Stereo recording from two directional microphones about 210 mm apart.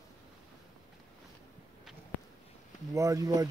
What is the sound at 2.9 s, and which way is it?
Speech, 15° right (ahead or behind).